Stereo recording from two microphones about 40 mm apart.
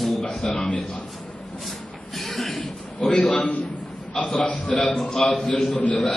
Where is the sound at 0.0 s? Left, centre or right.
Centre.